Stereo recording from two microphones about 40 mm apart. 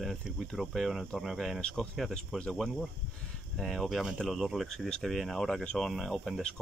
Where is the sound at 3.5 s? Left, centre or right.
Centre.